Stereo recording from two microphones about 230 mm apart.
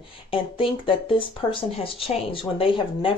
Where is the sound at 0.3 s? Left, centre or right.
Left.